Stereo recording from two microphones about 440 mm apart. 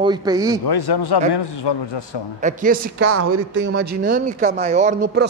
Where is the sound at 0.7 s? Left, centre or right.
Left.